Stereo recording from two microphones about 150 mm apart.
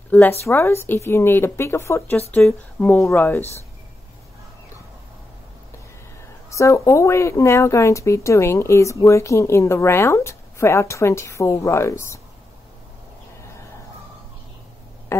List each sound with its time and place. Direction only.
0.1 s speech: 15° left (ahead or behind)
6.5 s speech: 20° left (ahead or behind)